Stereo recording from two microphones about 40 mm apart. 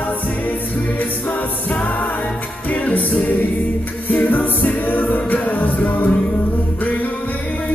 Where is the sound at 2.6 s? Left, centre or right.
Left.